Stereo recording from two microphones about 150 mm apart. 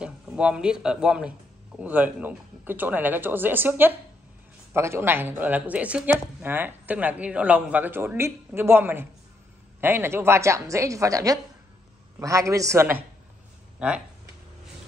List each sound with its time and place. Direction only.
0.0 s a woman's voice: 5° right (ahead or behind)